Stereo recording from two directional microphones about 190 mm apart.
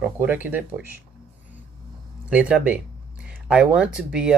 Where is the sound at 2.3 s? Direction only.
5° right (ahead or behind).